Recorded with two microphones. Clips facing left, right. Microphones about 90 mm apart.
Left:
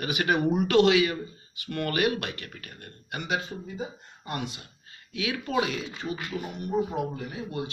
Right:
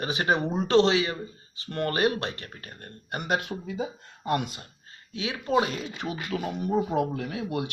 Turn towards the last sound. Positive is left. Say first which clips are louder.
# right 3 dB
turn(degrees=-90)